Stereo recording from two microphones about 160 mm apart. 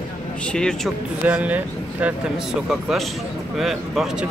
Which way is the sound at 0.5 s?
5° left (ahead or behind).